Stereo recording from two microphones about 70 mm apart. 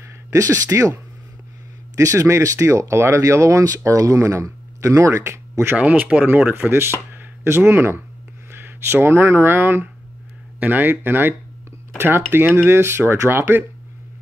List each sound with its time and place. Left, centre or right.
0.0 s speech: right
5.8 s speech: centre